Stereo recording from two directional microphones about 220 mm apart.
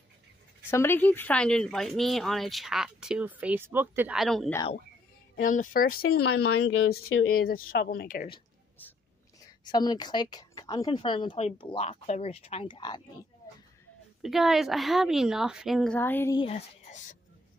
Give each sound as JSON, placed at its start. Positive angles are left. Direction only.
{"t": 0.7, "sound": "speech", "side_deg": 10}
{"t": 5.4, "sound": "speech", "side_deg": 35}
{"t": 6.5, "sound": "speech", "side_deg": 85}
{"t": 7.3, "sound": "speech", "side_deg": 40}
{"t": 9.7, "sound": "a woman's voice", "side_deg": 20}
{"t": 14.2, "sound": "speech", "side_deg": 0}
{"t": 16.3, "sound": "speech", "side_deg": 30}